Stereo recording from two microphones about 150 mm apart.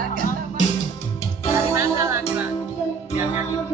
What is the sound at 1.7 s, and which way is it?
Music, 15° right (ahead or behind).